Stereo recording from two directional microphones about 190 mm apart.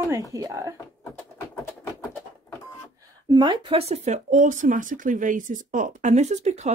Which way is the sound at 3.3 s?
25° right (ahead or behind).